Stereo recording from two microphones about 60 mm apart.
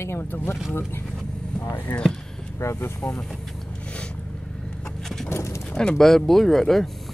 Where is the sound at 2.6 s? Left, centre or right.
Left.